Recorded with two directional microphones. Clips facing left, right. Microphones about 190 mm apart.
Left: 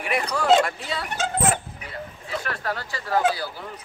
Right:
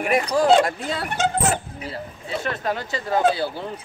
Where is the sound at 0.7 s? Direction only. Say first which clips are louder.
Right 3 dB; 50° right (ahead or behind).